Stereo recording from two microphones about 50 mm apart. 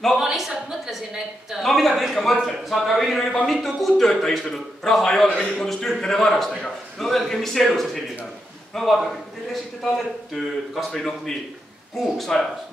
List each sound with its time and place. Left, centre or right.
0.2 s a woman's voice: centre